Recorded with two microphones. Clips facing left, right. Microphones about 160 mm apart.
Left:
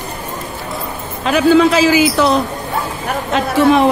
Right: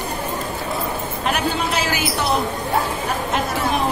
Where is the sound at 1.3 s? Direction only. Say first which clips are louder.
Left 14 dB; 90° left.